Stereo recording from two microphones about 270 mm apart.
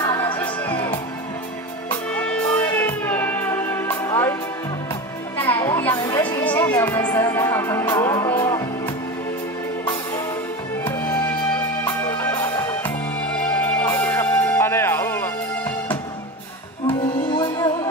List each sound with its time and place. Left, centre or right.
0.0 s music: centre
2.1 s music: centre
5.4 s music: centre
10.8 s music: centre
17.3 s music: centre